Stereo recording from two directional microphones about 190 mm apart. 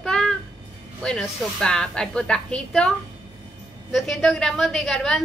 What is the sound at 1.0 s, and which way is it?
A woman's voice, 5° left (ahead or behind).